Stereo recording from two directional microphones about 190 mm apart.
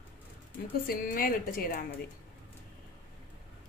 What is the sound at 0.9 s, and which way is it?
Speech, 50° left (ahead or behind).